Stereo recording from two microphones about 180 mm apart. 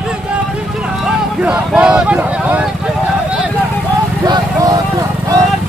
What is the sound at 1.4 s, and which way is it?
Speech, 5° right (ahead or behind).